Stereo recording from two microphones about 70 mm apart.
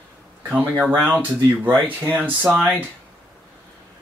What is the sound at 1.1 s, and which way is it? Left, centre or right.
Speech, right.